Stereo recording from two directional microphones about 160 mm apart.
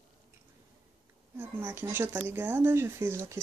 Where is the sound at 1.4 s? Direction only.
15° right (ahead or behind).